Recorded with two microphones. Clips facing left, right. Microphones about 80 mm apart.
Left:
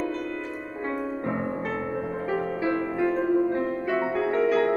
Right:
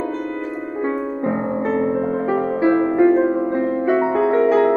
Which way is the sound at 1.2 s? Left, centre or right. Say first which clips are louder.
Right 8 dB; right.